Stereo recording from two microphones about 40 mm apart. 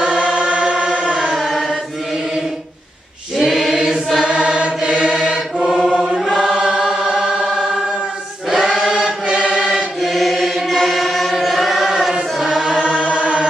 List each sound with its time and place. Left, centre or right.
0.2 s choir: right
1.2 s chant: centre
3.3 s choir: centre
4.2 s chant: right
5.9 s choir: centre
9.0 s music: right
10.0 s chant: centre
12.4 s choir: centre
13.1 s chant: right